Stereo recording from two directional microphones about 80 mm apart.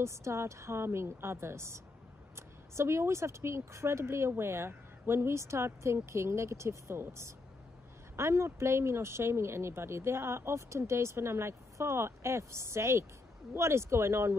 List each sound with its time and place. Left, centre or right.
0.0 s speech: right